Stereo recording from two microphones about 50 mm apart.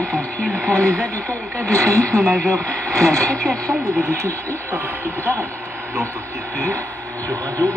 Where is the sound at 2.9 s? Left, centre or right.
Right.